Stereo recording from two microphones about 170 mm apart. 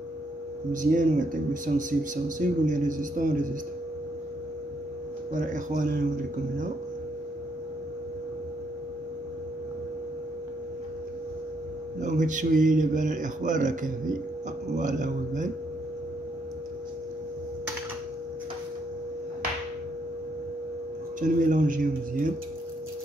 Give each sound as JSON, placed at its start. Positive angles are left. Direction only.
{"t": 0.7, "sound": "speech", "side_deg": -50}
{"t": 5.3, "sound": "speech", "side_deg": -50}
{"t": 12.0, "sound": "speech", "side_deg": -45}
{"t": 21.2, "sound": "speech", "side_deg": -50}